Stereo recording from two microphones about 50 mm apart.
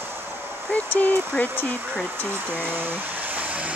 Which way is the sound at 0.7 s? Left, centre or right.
Left.